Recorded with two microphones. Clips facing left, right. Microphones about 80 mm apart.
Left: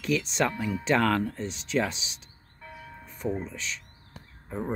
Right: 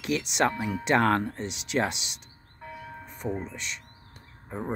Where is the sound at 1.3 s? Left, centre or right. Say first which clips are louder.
Left 1 dB; right.